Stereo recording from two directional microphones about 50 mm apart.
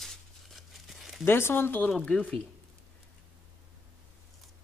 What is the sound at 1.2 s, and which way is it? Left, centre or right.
Speech, left.